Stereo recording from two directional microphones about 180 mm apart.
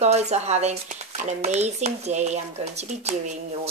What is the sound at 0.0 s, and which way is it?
Speech, 40° right (ahead or behind).